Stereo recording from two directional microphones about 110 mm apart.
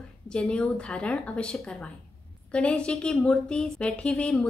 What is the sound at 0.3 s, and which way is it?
A woman's voice, 10° left (ahead or behind).